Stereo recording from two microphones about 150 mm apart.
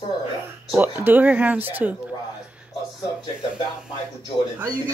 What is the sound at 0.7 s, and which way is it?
Speech, 15° right (ahead or behind).